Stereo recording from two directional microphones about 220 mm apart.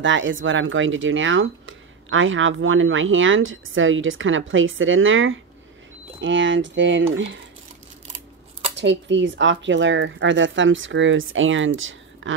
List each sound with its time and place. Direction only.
0.0 s speech: 55° right (ahead or behind)
8.7 s speech: 55° right (ahead or behind)